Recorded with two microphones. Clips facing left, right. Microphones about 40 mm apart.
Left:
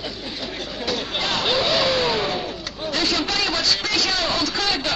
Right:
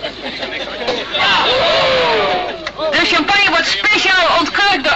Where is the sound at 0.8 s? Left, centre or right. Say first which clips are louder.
Right 10 dB; right.